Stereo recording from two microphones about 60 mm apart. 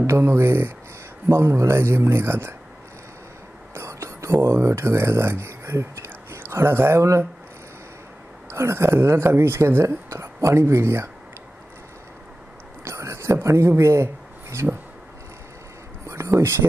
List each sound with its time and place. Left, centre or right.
0.0 s speech: right
3.7 s whispering: right
6.5 s speech: right
7.0 s speech: right
8.5 s speech: right
12.8 s a sound: right
16.1 s a sound: right